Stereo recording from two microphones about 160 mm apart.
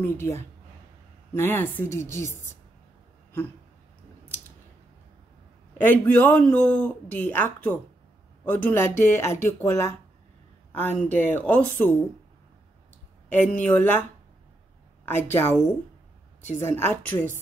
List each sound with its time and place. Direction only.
0.0 s speech: 15° left (ahead or behind)
5.8 s speech: 10° left (ahead or behind)
13.3 s speech: 10° left (ahead or behind)
15.0 s speech: 15° left (ahead or behind)